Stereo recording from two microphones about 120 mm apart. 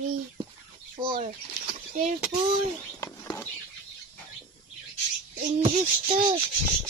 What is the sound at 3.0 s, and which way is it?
Music, 20° left (ahead or behind).